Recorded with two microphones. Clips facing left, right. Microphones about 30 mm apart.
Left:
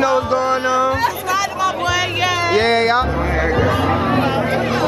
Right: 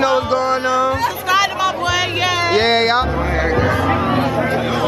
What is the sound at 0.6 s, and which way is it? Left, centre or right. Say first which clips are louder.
Chatter: even; centre.